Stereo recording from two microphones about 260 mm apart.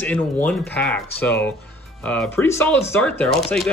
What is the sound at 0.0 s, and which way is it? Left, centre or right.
Speech, centre.